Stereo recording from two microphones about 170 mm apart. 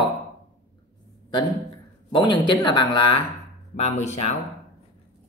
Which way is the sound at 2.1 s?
25° left (ahead or behind).